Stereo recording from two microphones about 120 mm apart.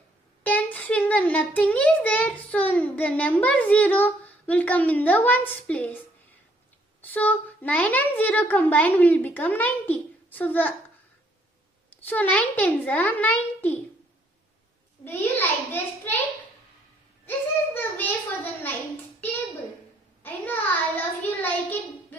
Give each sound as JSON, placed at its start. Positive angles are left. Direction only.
{"t": 0.4, "sound": "a sound", "side_deg": 15}
{"t": 7.0, "sound": "a child's voice", "side_deg": 15}
{"t": 12.0, "sound": "a child's voice", "side_deg": 15}
{"t": 15.0, "sound": "a child's voice", "side_deg": 15}
{"t": 17.3, "sound": "a sound", "side_deg": 15}
{"t": 20.2, "sound": "a child's voice", "side_deg": 15}